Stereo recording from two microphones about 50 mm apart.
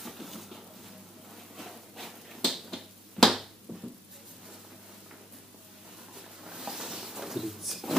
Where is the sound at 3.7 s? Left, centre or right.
Right.